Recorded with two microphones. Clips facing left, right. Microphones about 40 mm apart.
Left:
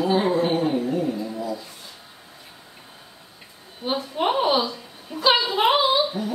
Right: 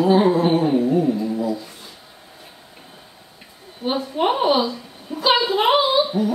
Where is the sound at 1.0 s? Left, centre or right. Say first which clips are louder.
Right 6 dB; centre.